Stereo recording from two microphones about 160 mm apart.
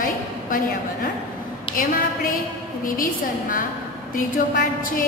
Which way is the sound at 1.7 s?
60° left (ahead or behind).